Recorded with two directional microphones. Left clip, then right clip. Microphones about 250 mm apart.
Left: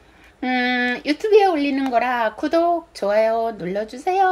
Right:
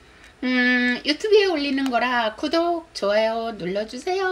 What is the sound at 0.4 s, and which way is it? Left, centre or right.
Speech, centre.